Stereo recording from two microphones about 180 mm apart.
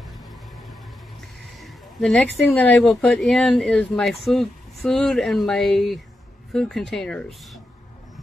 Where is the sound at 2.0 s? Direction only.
5° left (ahead or behind).